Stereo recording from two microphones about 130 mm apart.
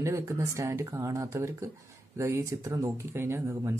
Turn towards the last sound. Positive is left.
turn(degrees=-25)  # may be behind; listen again after turning